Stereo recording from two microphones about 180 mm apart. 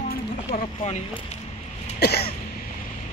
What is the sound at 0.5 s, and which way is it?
Speech, 40° left (ahead or behind).